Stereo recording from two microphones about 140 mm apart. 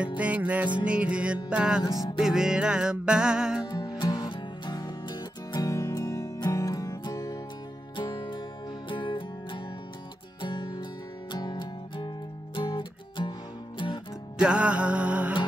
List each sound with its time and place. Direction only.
0.2 s music: 10° right (ahead or behind)
1.9 s music: 25° left (ahead or behind)
2.2 s music: 5° right (ahead or behind)
3.6 s music: 30° left (ahead or behind)
14.4 s music: 5° right (ahead or behind)